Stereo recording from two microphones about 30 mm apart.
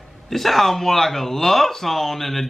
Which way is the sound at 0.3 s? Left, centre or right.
Centre.